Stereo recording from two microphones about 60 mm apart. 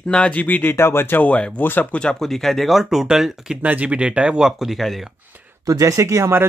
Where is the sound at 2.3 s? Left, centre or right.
Centre.